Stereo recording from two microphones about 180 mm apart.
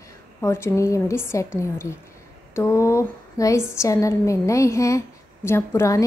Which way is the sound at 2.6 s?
15° left (ahead or behind).